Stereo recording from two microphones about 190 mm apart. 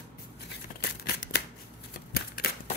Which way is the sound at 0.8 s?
55° left (ahead or behind).